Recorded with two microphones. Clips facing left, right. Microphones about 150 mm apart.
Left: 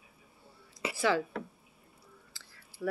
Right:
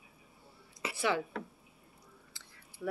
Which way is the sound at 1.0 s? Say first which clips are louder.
Left 3 dB; 20° right (ahead or behind).